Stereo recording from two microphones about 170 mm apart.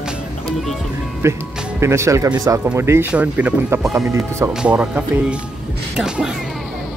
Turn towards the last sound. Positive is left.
turn(degrees=-5)  # may be behind; listen again after turning